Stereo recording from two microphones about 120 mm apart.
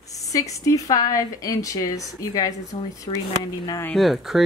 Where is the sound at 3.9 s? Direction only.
Centre (ahead or behind).